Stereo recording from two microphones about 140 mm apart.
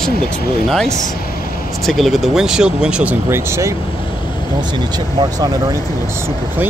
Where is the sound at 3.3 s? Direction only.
20° right (ahead or behind).